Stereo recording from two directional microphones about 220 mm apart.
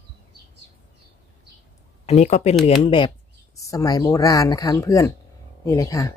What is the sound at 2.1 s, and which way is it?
Speech, 30° left (ahead or behind).